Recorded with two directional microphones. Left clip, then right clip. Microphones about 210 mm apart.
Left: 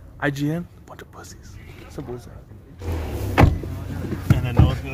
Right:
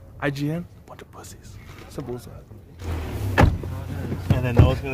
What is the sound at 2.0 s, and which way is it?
Speech, 30° right (ahead or behind).